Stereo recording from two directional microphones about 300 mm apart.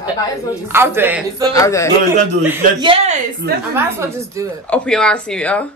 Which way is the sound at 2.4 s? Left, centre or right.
Centre.